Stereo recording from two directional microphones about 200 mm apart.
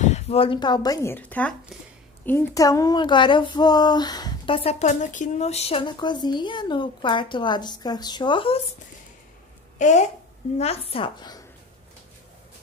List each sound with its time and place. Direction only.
0.0 s speech: 30° left (ahead or behind)
9.8 s speech: 35° left (ahead or behind); by 11.4 s 20° left (ahead or behind)